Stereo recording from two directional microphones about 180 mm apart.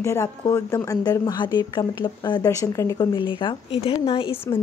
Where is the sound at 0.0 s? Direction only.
15° left (ahead or behind).